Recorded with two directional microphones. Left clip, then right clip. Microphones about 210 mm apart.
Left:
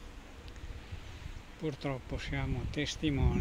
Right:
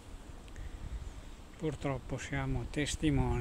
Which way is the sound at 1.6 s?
Centre (ahead or behind).